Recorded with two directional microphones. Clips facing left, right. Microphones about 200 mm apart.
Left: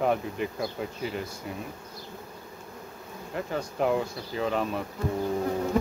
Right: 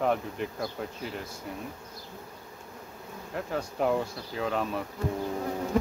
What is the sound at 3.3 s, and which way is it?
Speech, centre (ahead or behind).